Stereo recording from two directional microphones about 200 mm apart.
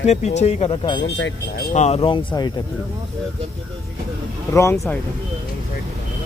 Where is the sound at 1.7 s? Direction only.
35° left (ahead or behind).